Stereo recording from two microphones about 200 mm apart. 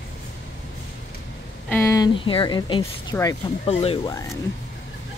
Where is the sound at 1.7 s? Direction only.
15° left (ahead or behind).